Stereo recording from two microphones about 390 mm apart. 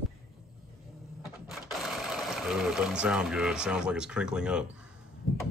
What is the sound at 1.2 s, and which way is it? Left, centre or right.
Speech, centre.